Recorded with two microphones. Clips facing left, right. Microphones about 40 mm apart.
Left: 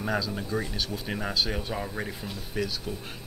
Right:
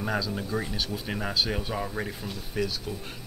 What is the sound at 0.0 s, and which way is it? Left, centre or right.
Speech, centre.